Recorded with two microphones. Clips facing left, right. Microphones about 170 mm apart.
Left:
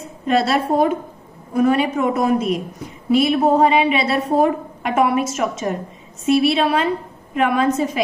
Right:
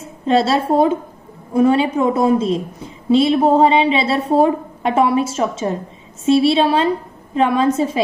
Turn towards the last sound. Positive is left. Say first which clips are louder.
# right 2 dB
turn(degrees=-30)  # may be behind; listen again after turning